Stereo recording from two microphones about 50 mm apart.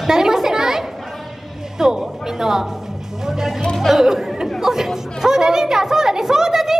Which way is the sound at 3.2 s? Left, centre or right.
Centre.